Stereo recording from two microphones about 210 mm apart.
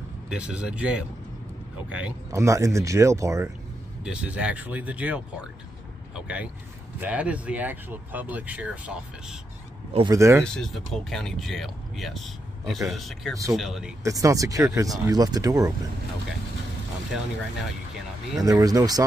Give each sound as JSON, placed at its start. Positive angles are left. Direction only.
{"t": 0.3, "sound": "speech", "side_deg": -5}
{"t": 9.9, "sound": "speech", "side_deg": -15}
{"t": 10.4, "sound": "speech", "side_deg": 0}
{"t": 14.0, "sound": "speech", "side_deg": -15}
{"t": 18.4, "sound": "speech", "side_deg": -15}